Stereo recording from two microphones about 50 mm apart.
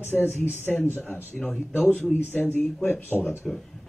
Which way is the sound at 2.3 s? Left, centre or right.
Left.